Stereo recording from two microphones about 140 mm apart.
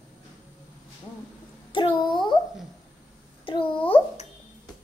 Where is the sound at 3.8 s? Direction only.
40° left (ahead or behind).